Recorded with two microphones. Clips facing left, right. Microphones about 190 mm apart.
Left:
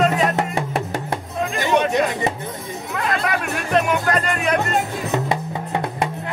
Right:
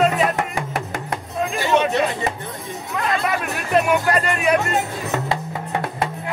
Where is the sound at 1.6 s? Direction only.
15° left (ahead or behind).